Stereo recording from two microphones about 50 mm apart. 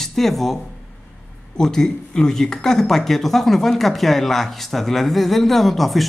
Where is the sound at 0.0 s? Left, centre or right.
Centre.